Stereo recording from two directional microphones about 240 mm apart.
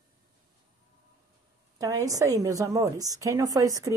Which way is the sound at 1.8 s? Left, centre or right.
Centre.